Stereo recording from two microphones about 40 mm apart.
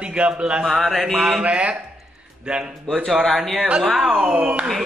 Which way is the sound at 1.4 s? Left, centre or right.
Right.